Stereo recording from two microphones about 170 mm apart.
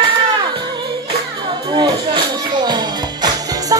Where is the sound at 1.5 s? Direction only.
25° right (ahead or behind).